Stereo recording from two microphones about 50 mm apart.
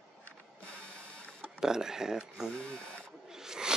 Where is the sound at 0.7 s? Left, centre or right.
Left.